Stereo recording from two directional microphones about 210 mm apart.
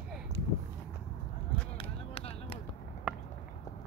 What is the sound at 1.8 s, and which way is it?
Basketball bounce, 25° left (ahead or behind).